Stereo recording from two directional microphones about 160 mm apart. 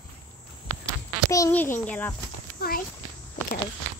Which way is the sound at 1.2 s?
20° left (ahead or behind).